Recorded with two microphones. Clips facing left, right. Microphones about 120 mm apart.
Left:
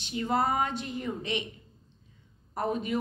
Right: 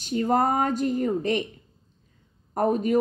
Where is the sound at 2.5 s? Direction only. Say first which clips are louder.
Right 8 dB; 45° right (ahead or behind).